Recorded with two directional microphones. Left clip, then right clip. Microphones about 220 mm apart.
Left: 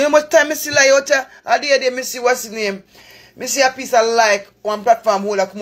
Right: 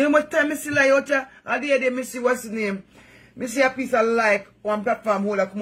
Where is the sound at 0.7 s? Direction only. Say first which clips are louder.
Left 6 dB; 15° right (ahead or behind).